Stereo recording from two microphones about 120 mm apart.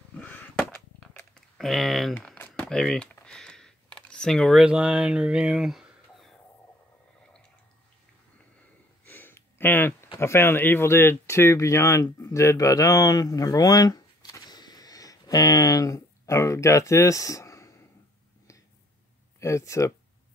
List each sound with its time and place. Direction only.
0.1 s a sound: 15° left (ahead or behind)
1.6 s speech: centre (ahead or behind)
2.1 s typing: 15° left (ahead or behind); by 6.3 s 5° right (ahead or behind)
9.0 s a sound: 15° left (ahead or behind)
10.1 s speech: 20° left (ahead or behind)
19.4 s speech: 25° left (ahead or behind)